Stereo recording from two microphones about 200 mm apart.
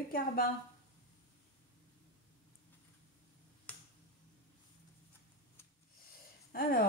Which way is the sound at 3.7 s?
10° left (ahead or behind).